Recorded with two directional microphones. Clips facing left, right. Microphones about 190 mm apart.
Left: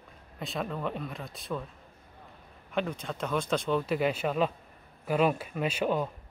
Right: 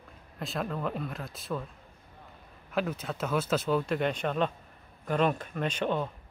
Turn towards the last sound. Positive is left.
turn(degrees=5)  # may be behind; listen again after turning